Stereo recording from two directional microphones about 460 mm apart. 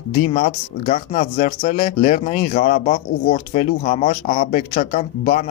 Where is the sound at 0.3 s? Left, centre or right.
Centre.